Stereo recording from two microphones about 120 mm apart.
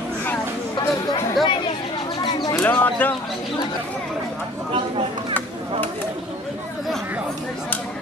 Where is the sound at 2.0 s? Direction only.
40° left (ahead or behind).